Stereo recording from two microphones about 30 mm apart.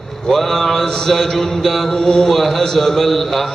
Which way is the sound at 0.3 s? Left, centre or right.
Centre.